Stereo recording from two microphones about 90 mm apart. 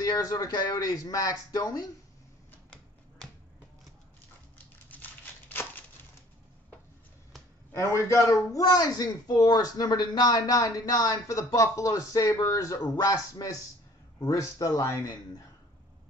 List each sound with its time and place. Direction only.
0.0 s a woman's voice: 45° left (ahead or behind)
4.8 s crumpling: 20° left (ahead or behind)
7.7 s a woman's voice: 35° left (ahead or behind)